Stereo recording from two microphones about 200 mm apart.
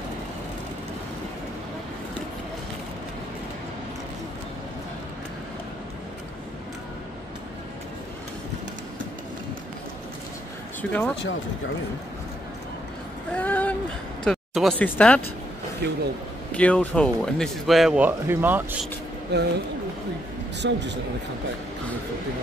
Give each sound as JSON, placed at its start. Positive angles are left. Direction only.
{"t": 10.8, "sound": "speech", "side_deg": 10}
{"t": 13.3, "sound": "a sound", "side_deg": 5}
{"t": 14.2, "sound": "speech", "side_deg": 0}
{"t": 15.8, "sound": "speech", "side_deg": -55}
{"t": 16.5, "sound": "speech", "side_deg": 5}
{"t": 19.3, "sound": "speech", "side_deg": -55}
{"t": 20.6, "sound": "speech", "side_deg": -60}